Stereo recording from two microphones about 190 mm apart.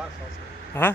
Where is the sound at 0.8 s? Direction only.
10° left (ahead or behind).